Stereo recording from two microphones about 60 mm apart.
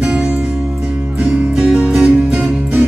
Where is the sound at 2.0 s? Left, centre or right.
Centre.